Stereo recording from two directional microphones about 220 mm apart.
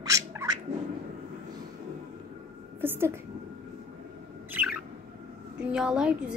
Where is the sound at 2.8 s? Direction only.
10° right (ahead or behind).